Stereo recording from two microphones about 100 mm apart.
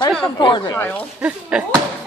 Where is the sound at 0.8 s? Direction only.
20° left (ahead or behind).